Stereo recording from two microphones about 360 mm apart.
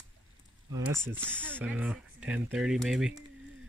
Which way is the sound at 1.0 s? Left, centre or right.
Centre.